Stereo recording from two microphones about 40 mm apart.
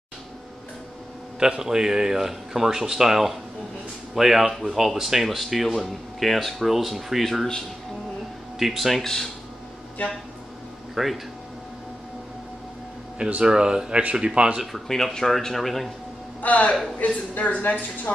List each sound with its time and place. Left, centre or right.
1.4 s speech: centre
8.5 s speech: centre
9.0 s speech: centre
11.0 s speech: centre
13.4 s speech: centre
14.9 s speech: centre
16.3 s a woman's voice: left